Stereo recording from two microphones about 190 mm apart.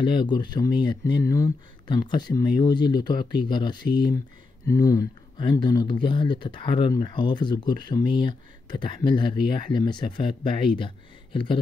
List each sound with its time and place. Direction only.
0.0 s speech: 25° left (ahead or behind)